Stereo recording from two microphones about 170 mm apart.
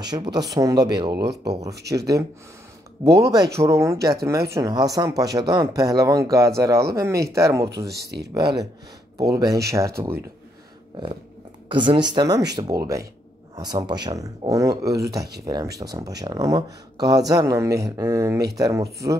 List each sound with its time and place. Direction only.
0.0 s speech: 25° right (ahead or behind)
7.8 s speech: 75° right (ahead or behind)
9.2 s speech: 20° right (ahead or behind)
11.7 s speech: 30° right (ahead or behind)